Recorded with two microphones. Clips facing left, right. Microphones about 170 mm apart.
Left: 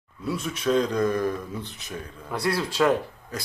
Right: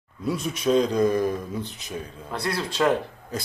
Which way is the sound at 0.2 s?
15° right (ahead or behind).